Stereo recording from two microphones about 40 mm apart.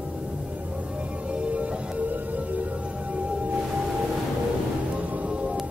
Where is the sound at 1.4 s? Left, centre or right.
Right.